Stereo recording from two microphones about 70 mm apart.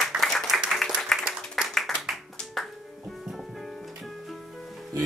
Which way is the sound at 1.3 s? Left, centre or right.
Centre.